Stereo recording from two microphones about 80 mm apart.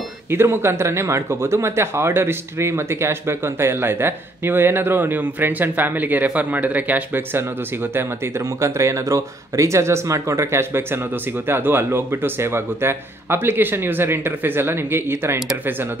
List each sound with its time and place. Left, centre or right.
0.3 s speech: right